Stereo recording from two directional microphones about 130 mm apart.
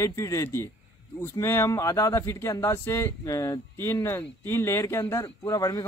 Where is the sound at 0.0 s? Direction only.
25° left (ahead or behind).